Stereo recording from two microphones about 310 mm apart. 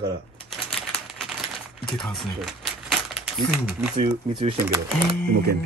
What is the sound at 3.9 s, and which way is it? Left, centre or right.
Speech, centre.